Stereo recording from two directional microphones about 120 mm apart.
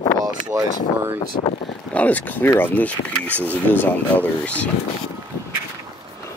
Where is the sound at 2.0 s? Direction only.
15° left (ahead or behind).